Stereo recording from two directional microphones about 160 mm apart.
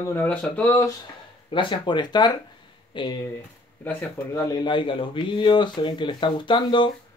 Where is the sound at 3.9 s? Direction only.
10° left (ahead or behind).